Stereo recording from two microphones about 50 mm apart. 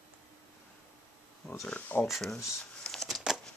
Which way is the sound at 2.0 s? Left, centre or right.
Centre.